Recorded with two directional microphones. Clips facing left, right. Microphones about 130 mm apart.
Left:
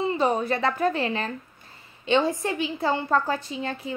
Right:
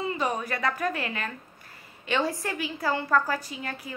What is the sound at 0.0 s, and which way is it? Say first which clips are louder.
A woman's voice: left 5 dB; 30° left (ahead or behind).